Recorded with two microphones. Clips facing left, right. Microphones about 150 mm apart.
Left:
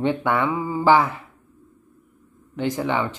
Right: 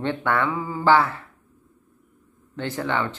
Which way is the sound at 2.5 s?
15° left (ahead or behind).